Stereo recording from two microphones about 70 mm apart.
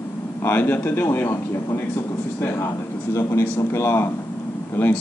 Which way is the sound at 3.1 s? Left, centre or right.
Left.